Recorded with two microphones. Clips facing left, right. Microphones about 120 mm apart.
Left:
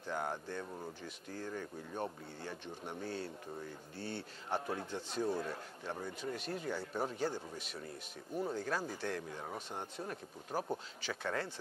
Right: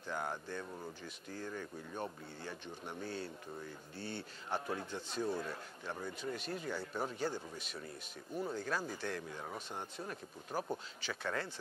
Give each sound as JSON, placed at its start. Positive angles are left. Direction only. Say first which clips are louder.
{"t": 0.0, "sound": "a man's voice", "louder": "left 2 dB", "side_deg": 30}